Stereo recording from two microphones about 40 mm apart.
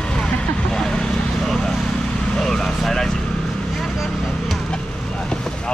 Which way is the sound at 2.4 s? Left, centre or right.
Centre.